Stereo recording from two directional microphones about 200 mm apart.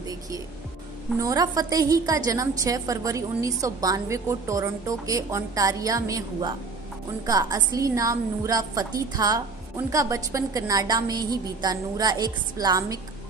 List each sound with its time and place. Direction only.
0.0 s music: 20° right (ahead or behind)
1.2 s a woman's voice: 20° right (ahead or behind)